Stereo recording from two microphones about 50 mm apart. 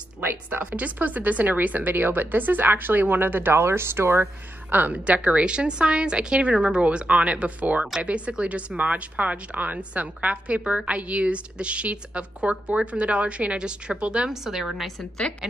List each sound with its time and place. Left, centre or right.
0.2 s speech: right
0.7 s speech: right
4.6 s a woman's voice: right
14.3 s a woman's voice: centre